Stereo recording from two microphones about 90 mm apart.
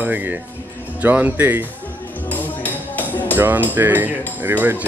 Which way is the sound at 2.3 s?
20° left (ahead or behind).